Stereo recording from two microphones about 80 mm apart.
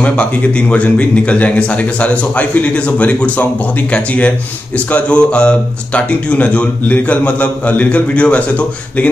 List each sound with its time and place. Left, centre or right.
0.0 s speech: centre